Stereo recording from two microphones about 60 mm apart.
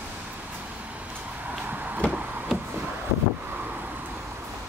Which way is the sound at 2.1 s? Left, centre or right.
Right.